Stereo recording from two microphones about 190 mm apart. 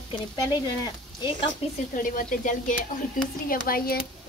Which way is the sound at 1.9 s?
45° left (ahead or behind).